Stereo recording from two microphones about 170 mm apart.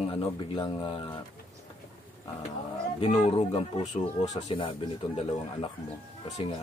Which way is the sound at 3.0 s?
40° left (ahead or behind).